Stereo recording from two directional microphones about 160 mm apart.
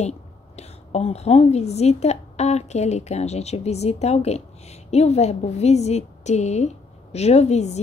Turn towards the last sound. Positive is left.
turn(degrees=45)  # may be behind; listen again after turning